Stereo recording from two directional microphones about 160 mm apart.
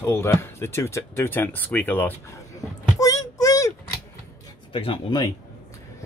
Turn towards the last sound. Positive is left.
turn(degrees=30)  # may be behind; listen again after turning